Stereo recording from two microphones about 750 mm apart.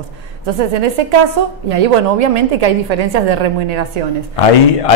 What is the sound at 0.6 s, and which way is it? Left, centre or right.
A woman's voice, right.